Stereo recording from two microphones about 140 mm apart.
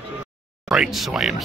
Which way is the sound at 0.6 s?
5° right (ahead or behind).